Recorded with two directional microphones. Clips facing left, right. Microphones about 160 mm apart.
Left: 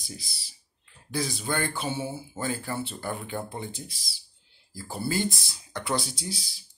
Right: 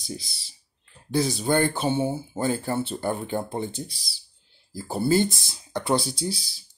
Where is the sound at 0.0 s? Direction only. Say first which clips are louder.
Right 7 dB; 25° right (ahead or behind).